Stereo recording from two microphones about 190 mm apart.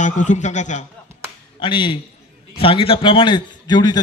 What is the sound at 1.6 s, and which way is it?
A man's voice, 25° left (ahead or behind).